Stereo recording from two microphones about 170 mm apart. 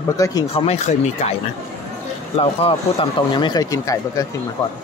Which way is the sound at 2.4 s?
35° left (ahead or behind).